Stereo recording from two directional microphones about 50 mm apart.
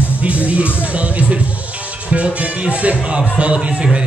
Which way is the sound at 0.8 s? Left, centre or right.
Right.